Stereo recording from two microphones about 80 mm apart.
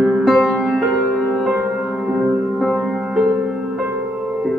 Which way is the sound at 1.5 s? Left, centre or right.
Centre.